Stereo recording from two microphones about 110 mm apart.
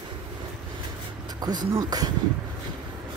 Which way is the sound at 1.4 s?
35° right (ahead or behind).